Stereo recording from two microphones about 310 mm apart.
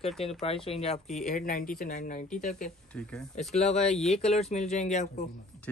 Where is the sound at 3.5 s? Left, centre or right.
Left.